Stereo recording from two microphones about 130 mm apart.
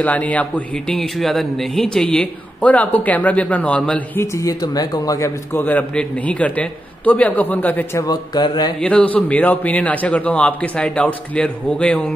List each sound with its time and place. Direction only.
0.0 s a man's voice: 10° left (ahead or behind)
4.2 s speech: 25° left (ahead or behind)
5.5 s a man's voice: 15° left (ahead or behind)
8.0 s speech: 30° left (ahead or behind)
8.8 s a man's voice: 10° left (ahead or behind)